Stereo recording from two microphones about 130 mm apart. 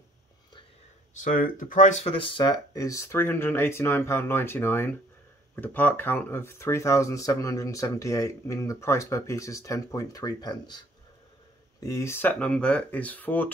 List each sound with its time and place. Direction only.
1.2 s speech: 90° left; by 2.0 s 75° left (ahead or behind)
2.0 s speech: 40° left (ahead or behind)
11.8 s speech: 20° left (ahead or behind)